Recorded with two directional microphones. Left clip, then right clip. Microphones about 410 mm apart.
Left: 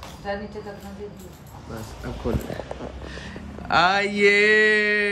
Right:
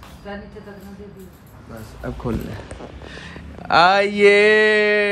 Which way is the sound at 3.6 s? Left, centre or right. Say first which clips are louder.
Right 5 dB; centre.